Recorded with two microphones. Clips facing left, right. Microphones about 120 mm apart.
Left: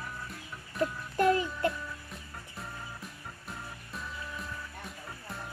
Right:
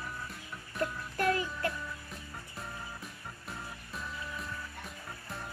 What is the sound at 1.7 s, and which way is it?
Music, centre (ahead or behind).